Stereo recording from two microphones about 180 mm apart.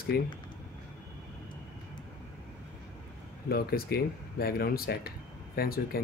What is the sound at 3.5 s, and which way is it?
Speech, 55° left (ahead or behind).